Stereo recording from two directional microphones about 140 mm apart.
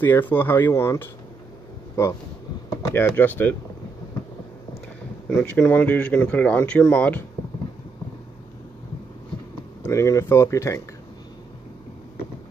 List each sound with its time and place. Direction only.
0.0 s speech: 15° left (ahead or behind)
5.3 s speech: 5° left (ahead or behind)
9.8 s speech: 20° left (ahead or behind)